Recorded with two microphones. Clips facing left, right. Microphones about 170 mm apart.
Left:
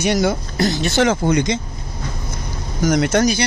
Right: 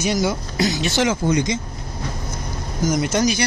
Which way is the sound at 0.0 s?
60° left (ahead or behind).